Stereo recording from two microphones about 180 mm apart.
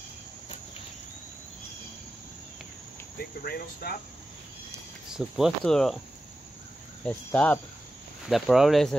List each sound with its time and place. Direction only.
3.4 s speech: 60° left (ahead or behind)
5.1 s speech: centre (ahead or behind)
7.1 s speech: 10° left (ahead or behind)